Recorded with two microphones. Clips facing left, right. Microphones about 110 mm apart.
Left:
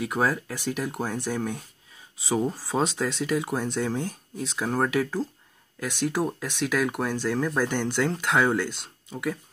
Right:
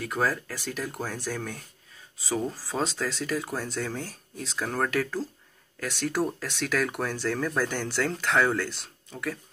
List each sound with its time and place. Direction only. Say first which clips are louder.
0.0 s speech: left 2 dB; 5° left (ahead or behind)
2.7 s speech: left 3 dB; 5° left (ahead or behind)